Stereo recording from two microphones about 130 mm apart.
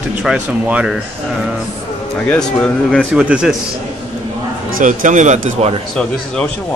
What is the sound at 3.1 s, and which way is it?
Speech, 5° right (ahead or behind).